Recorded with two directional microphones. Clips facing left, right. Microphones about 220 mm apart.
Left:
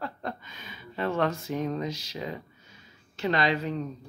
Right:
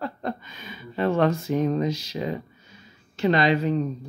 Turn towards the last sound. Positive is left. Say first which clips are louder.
# right 6 dB
turn(degrees=-20)  # may be behind; listen again after turning